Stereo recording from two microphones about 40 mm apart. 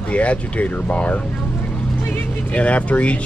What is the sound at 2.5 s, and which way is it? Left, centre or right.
Speech, left.